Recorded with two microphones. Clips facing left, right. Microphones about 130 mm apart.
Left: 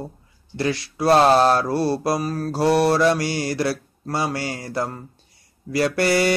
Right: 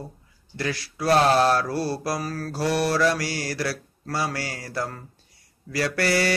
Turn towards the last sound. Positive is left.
turn(degrees=20)  # may be behind; listen again after turning